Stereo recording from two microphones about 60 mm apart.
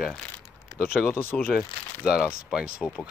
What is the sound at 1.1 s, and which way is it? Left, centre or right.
Speech, left.